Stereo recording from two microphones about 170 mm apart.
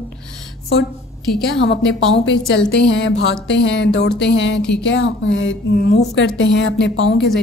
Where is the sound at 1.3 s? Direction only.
90° left.